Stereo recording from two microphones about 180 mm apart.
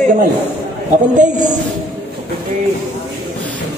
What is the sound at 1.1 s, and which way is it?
Speech, 45° right (ahead or behind).